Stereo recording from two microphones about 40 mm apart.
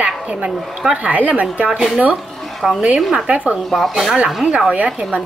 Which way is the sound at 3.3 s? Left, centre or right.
Right.